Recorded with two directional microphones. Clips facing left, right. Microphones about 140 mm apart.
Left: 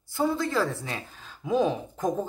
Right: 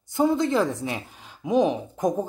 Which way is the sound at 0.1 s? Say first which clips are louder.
Right 5 dB; 20° right (ahead or behind).